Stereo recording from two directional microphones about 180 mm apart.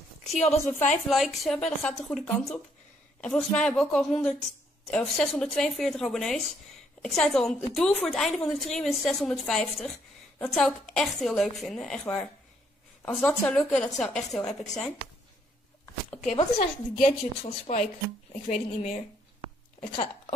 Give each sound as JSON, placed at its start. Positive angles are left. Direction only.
{"t": 0.6, "sound": "a woman's voice", "side_deg": 15}
{"t": 1.0, "sound": "a woman's voice", "side_deg": 0}
{"t": 16.5, "sound": "a woman's voice", "side_deg": 35}